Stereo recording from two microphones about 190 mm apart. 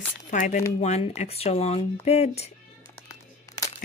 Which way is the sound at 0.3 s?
40° left (ahead or behind).